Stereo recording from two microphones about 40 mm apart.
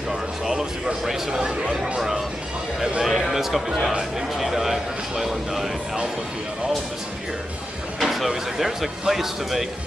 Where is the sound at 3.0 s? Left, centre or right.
Centre.